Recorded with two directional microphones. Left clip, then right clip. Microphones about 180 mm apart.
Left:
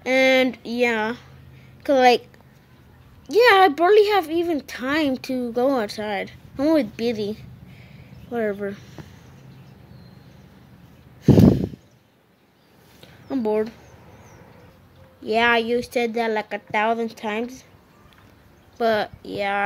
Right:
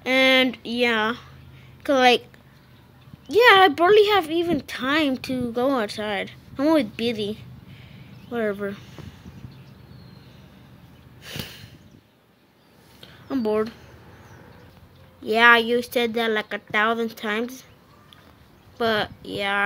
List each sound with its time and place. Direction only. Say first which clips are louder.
0.0 s a woman's voice: left 1 dB; 5° left (ahead or behind)
3.3 s speech: even; centre (ahead or behind)
11.2 s a sound: left 19 dB; centre (ahead or behind)
13.0 s a sound: left 1 dB; centre (ahead or behind)
15.2 s a woman's voice: right 3 dB; centre (ahead or behind)
18.8 s a woman's voice: left 2 dB; 5° left (ahead or behind)